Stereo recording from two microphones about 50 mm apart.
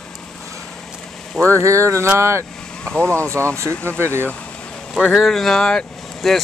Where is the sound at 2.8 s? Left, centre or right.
Left.